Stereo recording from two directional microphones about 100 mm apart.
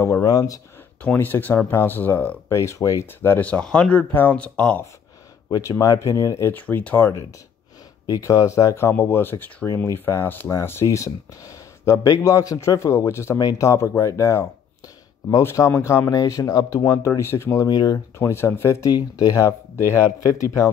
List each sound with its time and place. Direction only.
0.2 s speech: 35° left (ahead or behind)
1.1 s speech: 20° left (ahead or behind)
2.5 s speech: 30° left (ahead or behind); by 4.8 s 10° left (ahead or behind)
5.5 s speech: 35° left (ahead or behind)
6.5 s speech: 15° left (ahead or behind)
8.1 s speech: 35° left (ahead or behind)
17.6 s speech: 40° left (ahead or behind)
18.2 s speech: 25° left (ahead or behind)
18.9 s speech: 40° left (ahead or behind)